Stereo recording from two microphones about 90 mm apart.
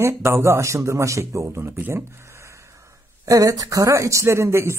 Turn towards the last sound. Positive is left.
turn(degrees=-30)  # may be behind; listen again after turning